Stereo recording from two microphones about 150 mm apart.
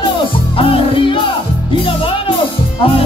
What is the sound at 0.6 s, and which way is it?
Speech, 40° left (ahead or behind).